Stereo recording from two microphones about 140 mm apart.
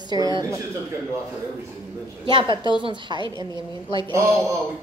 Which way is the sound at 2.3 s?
35° right (ahead or behind).